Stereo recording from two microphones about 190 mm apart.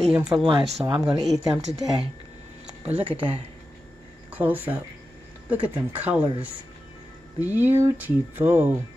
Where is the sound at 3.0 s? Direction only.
25° right (ahead or behind).